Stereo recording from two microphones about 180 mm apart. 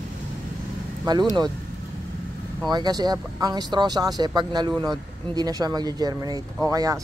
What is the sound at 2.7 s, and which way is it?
Speech, 20° right (ahead or behind).